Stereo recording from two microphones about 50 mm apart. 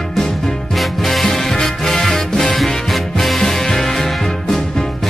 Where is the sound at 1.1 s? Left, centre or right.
Centre.